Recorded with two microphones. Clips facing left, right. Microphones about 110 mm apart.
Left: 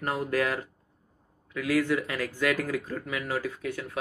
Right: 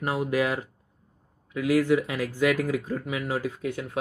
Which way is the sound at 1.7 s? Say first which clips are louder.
Right 4 dB; 15° right (ahead or behind).